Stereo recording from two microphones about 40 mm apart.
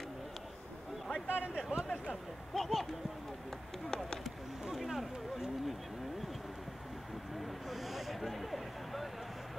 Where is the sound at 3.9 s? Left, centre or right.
Centre.